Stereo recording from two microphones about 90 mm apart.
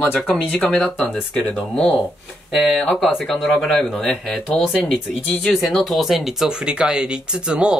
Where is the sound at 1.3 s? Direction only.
Centre (ahead or behind).